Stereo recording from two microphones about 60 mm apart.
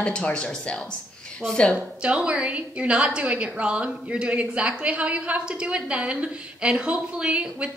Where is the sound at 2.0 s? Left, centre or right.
Centre.